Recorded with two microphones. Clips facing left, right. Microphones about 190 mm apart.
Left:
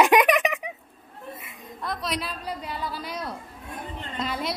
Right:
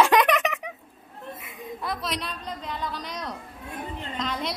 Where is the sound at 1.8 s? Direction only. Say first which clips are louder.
Left 2 dB; centre (ahead or behind).